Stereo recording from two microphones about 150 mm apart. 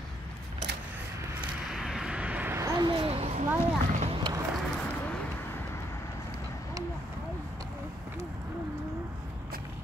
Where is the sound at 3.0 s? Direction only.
45° right (ahead or behind).